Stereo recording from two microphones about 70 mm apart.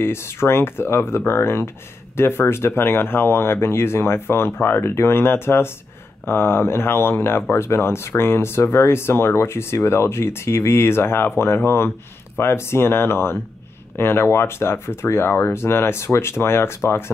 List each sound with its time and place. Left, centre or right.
0.0 s speech: left